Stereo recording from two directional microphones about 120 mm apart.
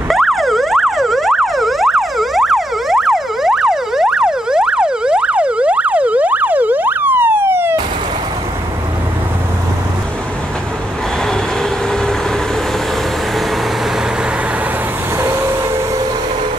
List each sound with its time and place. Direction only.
0.1 s emergency vehicle: centre (ahead or behind); by 7.7 s 20° right (ahead or behind)
15.1 s vehicle: 20° right (ahead or behind)